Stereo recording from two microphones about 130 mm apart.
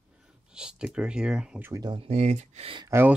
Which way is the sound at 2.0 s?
55° right (ahead or behind).